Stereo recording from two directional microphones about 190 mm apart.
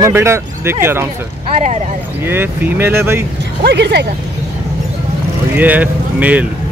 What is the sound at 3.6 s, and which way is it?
Speech, 60° right (ahead or behind).